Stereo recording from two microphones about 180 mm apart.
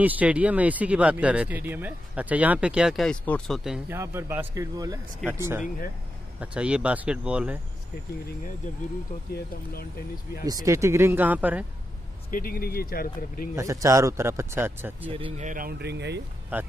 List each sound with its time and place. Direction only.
0.0 s speech: 10° right (ahead or behind)
3.9 s speech: 15° right (ahead or behind)
10.4 s speech: 20° right (ahead or behind)
12.3 s speech: 55° left (ahead or behind)
13.6 s speech: 15° right (ahead or behind)
15.0 s speech: 30° right (ahead or behind); by 16.2 s 70° right (ahead or behind)
16.5 s speech: 10° right (ahead or behind)